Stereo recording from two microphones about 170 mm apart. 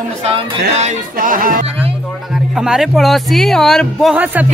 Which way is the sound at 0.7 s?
45° right (ahead or behind).